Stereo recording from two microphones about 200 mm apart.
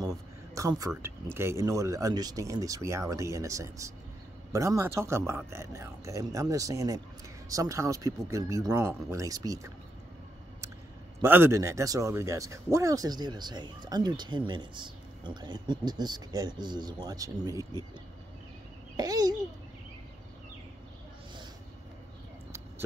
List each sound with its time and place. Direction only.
0.0 s a man's voice: 15° right (ahead or behind)
11.1 s speech: 10° right (ahead or behind)
18.9 s speech: 20° right (ahead or behind)